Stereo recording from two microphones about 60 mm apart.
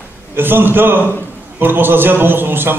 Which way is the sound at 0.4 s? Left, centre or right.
Right.